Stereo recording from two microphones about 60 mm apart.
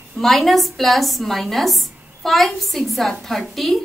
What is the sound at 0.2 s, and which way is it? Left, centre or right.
A woman's voice, centre.